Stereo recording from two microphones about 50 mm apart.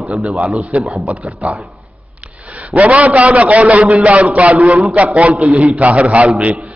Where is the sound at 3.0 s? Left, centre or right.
Right.